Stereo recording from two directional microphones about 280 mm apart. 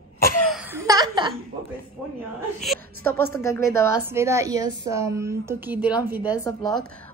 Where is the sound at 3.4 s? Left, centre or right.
Centre.